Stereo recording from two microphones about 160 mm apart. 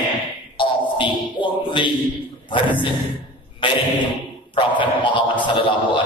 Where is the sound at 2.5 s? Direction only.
30° left (ahead or behind).